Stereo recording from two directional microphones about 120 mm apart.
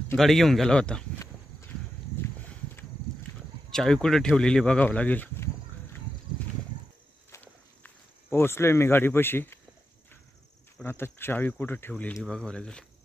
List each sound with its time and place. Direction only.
0.2 s speech: centre (ahead or behind)
3.7 s speech: 5° left (ahead or behind)
7.2 s walk: 20° left (ahead or behind)
10.8 s speech: 15° left (ahead or behind)
12.2 s speech: 5° left (ahead or behind)